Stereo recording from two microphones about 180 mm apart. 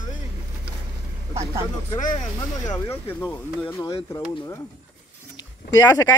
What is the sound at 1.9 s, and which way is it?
Speech, 20° left (ahead or behind).